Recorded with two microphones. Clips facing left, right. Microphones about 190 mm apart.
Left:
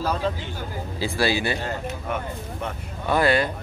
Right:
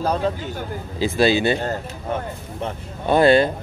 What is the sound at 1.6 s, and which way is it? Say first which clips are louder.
Speech: right 3 dB; 35° right (ahead or behind).